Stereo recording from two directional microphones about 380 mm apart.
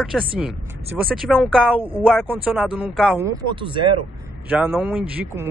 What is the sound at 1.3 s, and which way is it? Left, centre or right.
Speech, centre.